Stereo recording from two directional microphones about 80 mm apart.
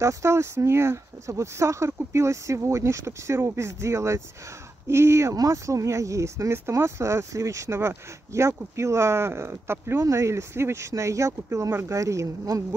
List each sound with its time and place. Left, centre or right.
0.0 s speech: right
5.3 s speech: right